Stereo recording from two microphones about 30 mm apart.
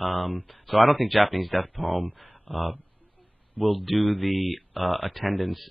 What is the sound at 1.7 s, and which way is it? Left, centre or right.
Speech, centre.